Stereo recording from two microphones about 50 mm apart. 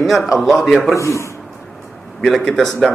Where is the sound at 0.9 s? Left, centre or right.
Left.